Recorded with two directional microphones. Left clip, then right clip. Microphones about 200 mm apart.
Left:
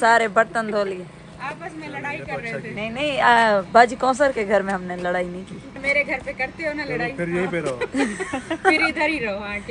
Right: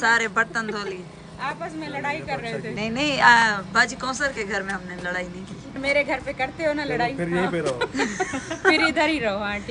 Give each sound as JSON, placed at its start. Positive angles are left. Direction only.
{"t": 0.0, "sound": "speech", "side_deg": 5}
{"t": 2.7, "sound": "a woman's voice", "side_deg": -5}
{"t": 5.9, "sound": "a woman's voice", "side_deg": -25}
{"t": 7.2, "sound": "speech", "side_deg": 0}
{"t": 8.9, "sound": "a woman's voice", "side_deg": -25}